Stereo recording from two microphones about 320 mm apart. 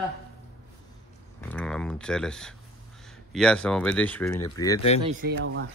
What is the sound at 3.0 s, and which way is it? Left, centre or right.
Speech, centre.